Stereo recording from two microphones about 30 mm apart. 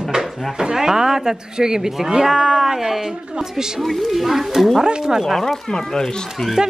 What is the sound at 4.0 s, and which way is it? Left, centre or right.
Speech, centre.